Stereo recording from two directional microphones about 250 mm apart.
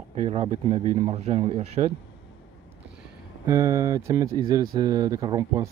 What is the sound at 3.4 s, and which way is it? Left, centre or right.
Speech, centre.